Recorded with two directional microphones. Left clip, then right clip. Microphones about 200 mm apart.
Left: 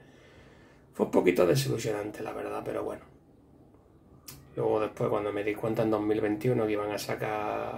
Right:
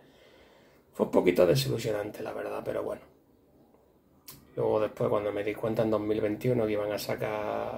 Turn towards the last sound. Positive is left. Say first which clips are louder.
# even
turn(degrees=5)  # may be behind; listen again after turning